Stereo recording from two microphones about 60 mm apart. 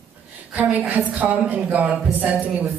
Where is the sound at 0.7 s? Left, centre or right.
Right.